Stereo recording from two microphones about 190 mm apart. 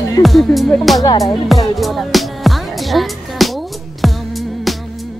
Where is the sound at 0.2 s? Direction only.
Centre (ahead or behind).